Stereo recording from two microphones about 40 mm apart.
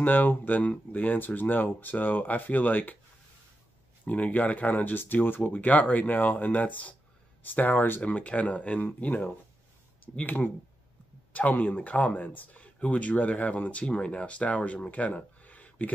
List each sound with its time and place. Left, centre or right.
0.0 s speech: left
4.0 s speech: left
7.4 s speech: left
8.0 s speech: left
12.6 s speech: left
15.4 s a sound: left